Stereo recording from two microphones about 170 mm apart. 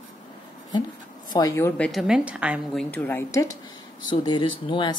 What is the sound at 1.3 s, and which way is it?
Speech, 20° left (ahead or behind).